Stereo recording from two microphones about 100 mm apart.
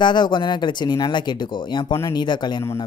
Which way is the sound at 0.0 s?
50° left (ahead or behind).